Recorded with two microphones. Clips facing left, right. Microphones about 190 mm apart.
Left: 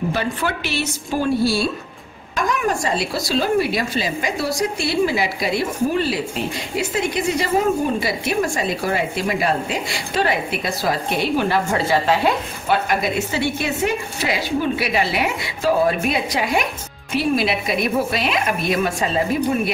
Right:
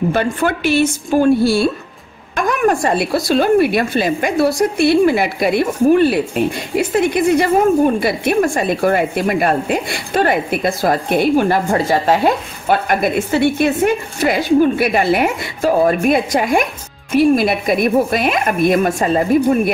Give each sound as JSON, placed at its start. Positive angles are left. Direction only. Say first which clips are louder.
{"t": 0.1, "sound": "a woman's voice", "louder": "right 6 dB", "side_deg": -50}